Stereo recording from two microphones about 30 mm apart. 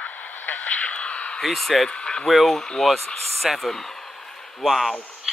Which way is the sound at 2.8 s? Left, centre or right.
Centre.